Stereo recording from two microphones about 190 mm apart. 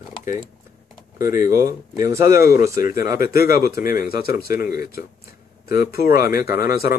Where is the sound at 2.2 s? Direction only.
50° left (ahead or behind).